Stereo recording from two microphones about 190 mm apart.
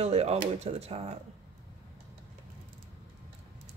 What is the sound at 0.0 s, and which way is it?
Speech, 35° right (ahead or behind).